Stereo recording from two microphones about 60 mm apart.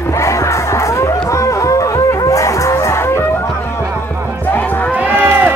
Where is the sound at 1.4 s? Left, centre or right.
Left.